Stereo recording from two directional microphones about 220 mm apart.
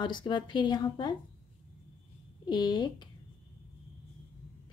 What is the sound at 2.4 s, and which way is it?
Speech, 20° left (ahead or behind).